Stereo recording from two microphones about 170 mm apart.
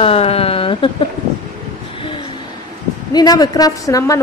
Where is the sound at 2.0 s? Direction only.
30° left (ahead or behind).